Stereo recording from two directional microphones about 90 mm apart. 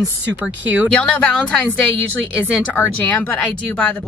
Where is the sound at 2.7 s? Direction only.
20° left (ahead or behind).